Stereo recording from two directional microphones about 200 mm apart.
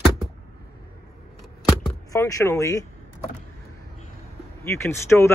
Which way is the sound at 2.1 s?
15° left (ahead or behind).